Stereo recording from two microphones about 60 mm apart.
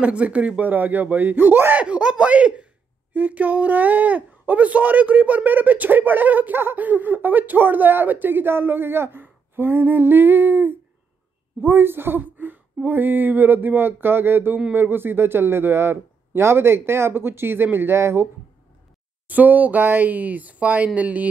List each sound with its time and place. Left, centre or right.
0.0 s speech: right
19.2 s speech: right